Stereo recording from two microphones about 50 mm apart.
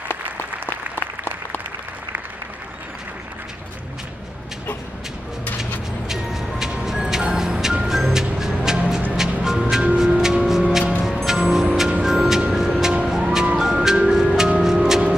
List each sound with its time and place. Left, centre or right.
0.7 s applause: left
6.0 s music: centre